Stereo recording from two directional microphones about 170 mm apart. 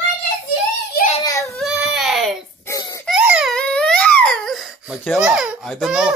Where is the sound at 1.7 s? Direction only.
5° right (ahead or behind).